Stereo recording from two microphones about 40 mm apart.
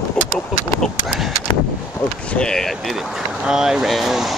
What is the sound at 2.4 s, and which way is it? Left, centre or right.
Speech, centre.